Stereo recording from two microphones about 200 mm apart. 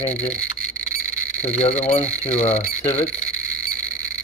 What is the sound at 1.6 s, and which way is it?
Speech, 30° left (ahead or behind).